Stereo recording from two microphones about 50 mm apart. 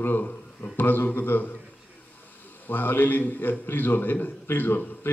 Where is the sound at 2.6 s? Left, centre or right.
Left.